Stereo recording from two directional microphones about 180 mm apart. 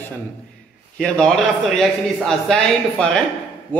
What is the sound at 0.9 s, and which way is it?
A man's voice, 5° left (ahead or behind).